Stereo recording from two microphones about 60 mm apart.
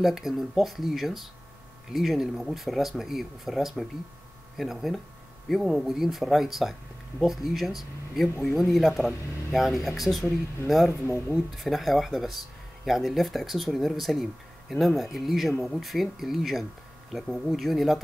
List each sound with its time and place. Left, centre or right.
0.0 s speech: centre
11.1 s speech: left
11.3 s speech: centre